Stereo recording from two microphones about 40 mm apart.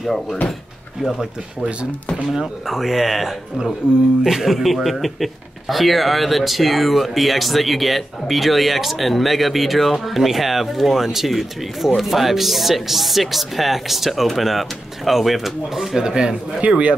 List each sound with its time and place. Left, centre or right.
0.0 s speech: centre
1.1 s speech: centre
2.6 s speech: centre
16.6 s a man's voice: right